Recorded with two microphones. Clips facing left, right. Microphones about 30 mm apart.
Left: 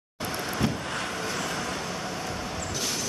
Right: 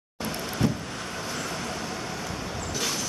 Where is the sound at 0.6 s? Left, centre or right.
Left.